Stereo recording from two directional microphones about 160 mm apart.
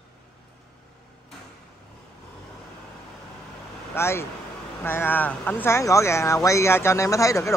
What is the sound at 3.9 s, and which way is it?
Speech, 15° left (ahead or behind).